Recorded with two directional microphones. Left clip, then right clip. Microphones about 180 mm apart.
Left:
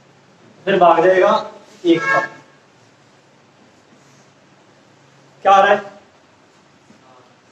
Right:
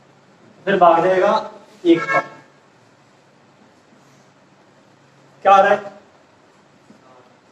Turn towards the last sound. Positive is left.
turn(degrees=15)  # may be behind; listen again after turning